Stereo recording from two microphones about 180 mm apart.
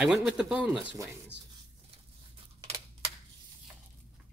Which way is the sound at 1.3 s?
75° right (ahead or behind).